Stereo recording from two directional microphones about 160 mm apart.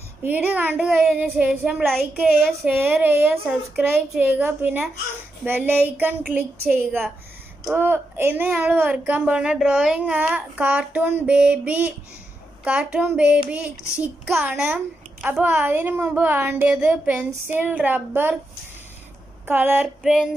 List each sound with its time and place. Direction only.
0.2 s speech: 10° right (ahead or behind)
2.1 s child singing: 5° right (ahead or behind)
2.7 s speech: 15° right (ahead or behind)
7.7 s speech: 15° right (ahead or behind)
19.4 s speech: 10° right (ahead or behind)